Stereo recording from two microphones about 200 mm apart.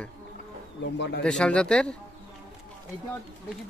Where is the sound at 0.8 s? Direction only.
60° left (ahead or behind).